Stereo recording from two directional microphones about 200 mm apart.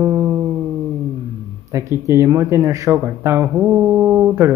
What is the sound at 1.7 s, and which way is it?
Speech, 15° right (ahead or behind).